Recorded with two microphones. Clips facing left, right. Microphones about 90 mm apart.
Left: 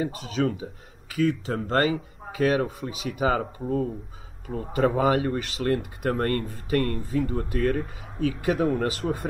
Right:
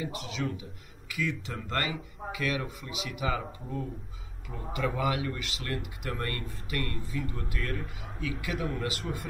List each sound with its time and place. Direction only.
0.4 s speech: 65° left (ahead or behind)
1.1 s speech: 40° left (ahead or behind)